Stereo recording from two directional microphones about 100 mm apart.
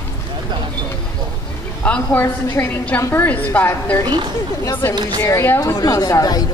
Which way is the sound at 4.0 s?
50° right (ahead or behind).